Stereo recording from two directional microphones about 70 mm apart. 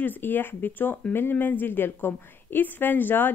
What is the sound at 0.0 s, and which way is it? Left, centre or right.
Speech, left.